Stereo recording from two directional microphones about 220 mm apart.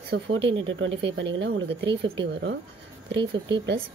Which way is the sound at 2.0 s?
55° right (ahead or behind).